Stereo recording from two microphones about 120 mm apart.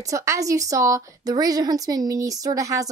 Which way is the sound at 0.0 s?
25° right (ahead or behind).